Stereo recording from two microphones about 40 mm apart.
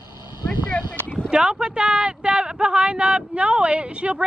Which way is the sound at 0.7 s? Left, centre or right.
Left.